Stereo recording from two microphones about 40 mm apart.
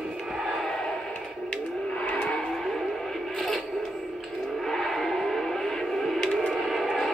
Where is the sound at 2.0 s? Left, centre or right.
Left.